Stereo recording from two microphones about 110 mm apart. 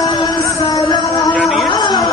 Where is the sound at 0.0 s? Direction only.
40° left (ahead or behind).